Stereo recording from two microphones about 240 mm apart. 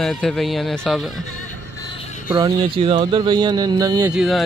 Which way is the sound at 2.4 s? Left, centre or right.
Centre.